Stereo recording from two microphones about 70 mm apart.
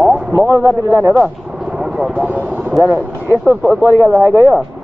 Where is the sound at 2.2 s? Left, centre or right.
Right.